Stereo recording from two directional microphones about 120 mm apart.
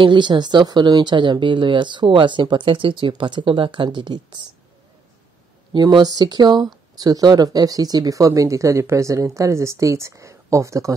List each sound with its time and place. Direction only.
0.0 s speech: 40° right (ahead or behind)
5.7 s speech: 40° right (ahead or behind)